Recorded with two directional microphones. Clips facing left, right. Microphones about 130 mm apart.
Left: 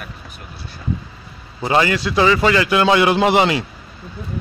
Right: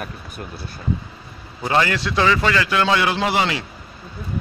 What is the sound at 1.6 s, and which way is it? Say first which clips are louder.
A man's voice: left 3 dB; 10° left (ahead or behind).